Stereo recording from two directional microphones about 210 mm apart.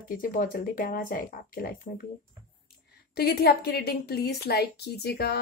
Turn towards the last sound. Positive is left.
turn(degrees=50)  # may be behind; listen again after turning